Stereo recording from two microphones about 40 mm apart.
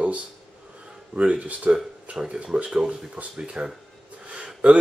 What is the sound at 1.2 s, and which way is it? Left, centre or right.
Speech, right.